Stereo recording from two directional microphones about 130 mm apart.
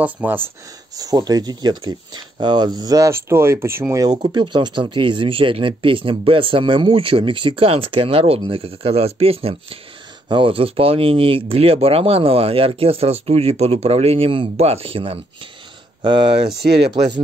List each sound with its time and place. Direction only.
0.0 s speech: 15° right (ahead or behind)
0.9 s speech: 30° right (ahead or behind)
4.3 s speech: 40° right (ahead or behind)